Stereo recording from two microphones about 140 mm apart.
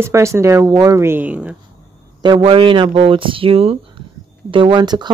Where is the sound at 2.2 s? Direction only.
35° right (ahead or behind).